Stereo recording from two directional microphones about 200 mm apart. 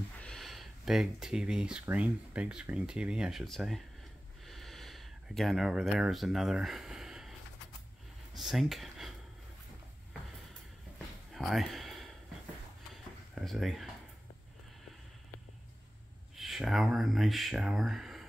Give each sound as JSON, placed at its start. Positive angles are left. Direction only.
{"t": 0.2, "sound": "speech", "side_deg": 0}
{"t": 4.5, "sound": "a sound", "side_deg": 0}
{"t": 8.4, "sound": "speech", "side_deg": 0}
{"t": 11.3, "sound": "a sound", "side_deg": 0}
{"t": 13.3, "sound": "speech", "side_deg": 0}
{"t": 16.3, "sound": "speech", "side_deg": 0}